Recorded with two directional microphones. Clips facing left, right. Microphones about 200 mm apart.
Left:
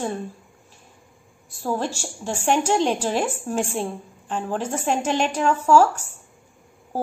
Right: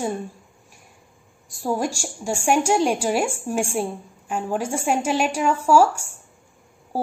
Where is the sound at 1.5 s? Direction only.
15° right (ahead or behind).